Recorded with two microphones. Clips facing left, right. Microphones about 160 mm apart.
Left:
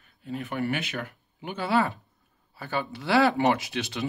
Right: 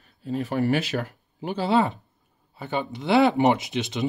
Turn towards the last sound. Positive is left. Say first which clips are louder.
# right 3 dB
turn(degrees=-20)  # may be behind; listen again after turning